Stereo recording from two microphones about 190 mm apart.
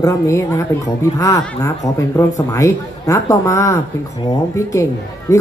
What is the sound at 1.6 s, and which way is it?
Speech, 15° left (ahead or behind).